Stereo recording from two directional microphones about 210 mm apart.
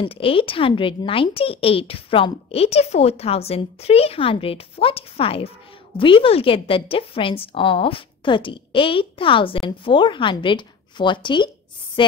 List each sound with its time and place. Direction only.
0.0 s a woman's voice: 25° left (ahead or behind)